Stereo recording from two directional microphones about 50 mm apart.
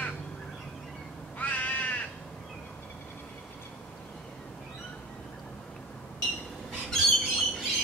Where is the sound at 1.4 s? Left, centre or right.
Left.